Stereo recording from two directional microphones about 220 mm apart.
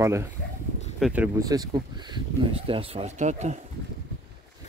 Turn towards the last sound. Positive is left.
turn(degrees=-30)  # may be behind; listen again after turning